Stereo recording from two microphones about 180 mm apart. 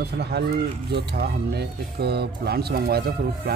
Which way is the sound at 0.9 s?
65° right (ahead or behind).